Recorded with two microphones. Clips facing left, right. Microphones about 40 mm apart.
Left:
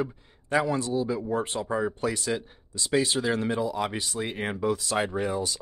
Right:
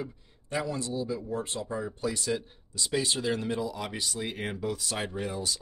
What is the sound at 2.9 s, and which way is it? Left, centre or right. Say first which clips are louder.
Speech: left 5 dB; centre.